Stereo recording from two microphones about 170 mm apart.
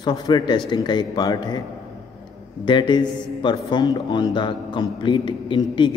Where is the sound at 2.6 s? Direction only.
30° left (ahead or behind).